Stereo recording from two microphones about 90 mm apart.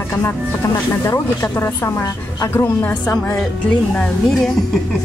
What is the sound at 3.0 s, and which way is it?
Speech, 40° left (ahead or behind).